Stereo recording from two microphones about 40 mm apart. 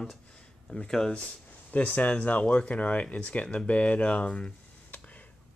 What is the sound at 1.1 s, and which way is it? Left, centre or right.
Speech, left.